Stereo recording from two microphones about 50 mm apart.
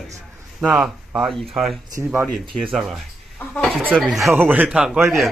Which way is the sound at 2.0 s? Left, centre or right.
Right.